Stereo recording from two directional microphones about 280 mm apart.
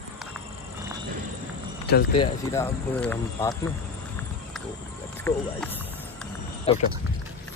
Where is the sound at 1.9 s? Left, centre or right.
Left.